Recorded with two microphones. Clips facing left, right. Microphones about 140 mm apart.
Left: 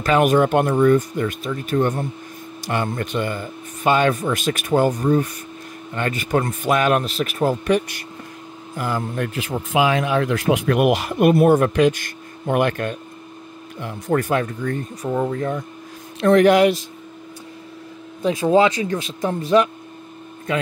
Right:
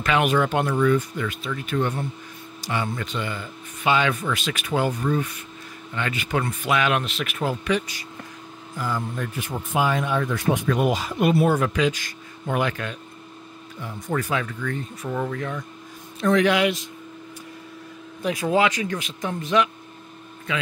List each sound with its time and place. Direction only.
0.0 s speech: 40° left (ahead or behind)
8.7 s speech: 60° left (ahead or behind)
13.7 s speech: 70° left (ahead or behind); by 14.9 s 40° left (ahead or behind)
15.0 s speech: 25° left (ahead or behind)
16.2 s speech: 55° left (ahead or behind)
18.2 s speech: 25° left (ahead or behind)